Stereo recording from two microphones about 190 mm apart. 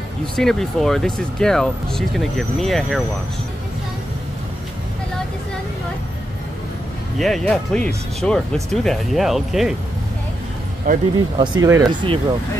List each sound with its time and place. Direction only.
0.4 s speech: centre (ahead or behind)
7.2 s speech: centre (ahead or behind)
10.9 s speech: 45° right (ahead or behind)
11.3 s speech: 25° right (ahead or behind)